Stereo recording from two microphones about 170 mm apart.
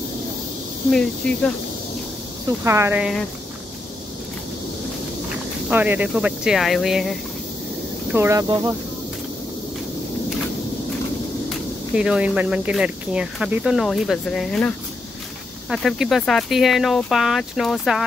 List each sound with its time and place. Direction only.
0.9 s speech: 5° left (ahead or behind)
2.6 s speech: 15° right (ahead or behind)
3.0 s speech: centre (ahead or behind)
5.7 s speech: 10° right (ahead or behind)
8.1 s speech: 15° right (ahead or behind)
11.4 s speech: 5° right (ahead or behind)
15.7 s speech: centre (ahead or behind)